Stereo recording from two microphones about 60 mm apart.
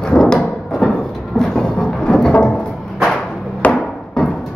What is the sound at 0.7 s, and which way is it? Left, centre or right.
Music, centre.